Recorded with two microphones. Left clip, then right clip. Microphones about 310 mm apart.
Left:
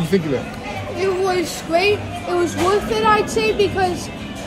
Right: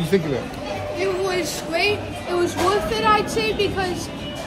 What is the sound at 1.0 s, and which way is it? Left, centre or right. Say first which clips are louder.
A woman's voice: left 4 dB; centre.